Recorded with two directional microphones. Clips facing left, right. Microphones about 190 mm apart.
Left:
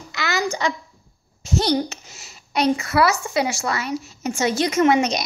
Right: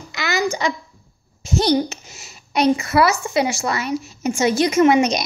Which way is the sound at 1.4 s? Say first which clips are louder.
Right 3 dB; 15° right (ahead or behind).